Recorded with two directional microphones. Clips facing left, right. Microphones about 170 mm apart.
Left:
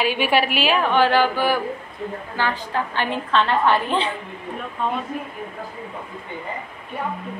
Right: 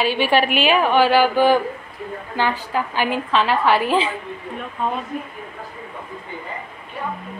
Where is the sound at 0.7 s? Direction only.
10° right (ahead or behind).